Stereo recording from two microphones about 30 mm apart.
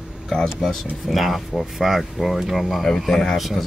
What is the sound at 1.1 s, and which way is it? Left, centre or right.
Speech, centre.